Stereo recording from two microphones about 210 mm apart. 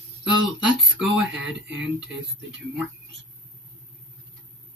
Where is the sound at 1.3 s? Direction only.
5° right (ahead or behind).